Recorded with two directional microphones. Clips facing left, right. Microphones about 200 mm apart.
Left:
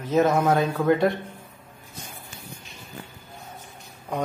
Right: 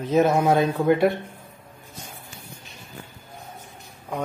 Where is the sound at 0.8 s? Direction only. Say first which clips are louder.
Right 1 dB; 10° right (ahead or behind).